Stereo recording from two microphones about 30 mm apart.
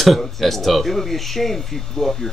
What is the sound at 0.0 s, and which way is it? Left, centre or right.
Speech, centre.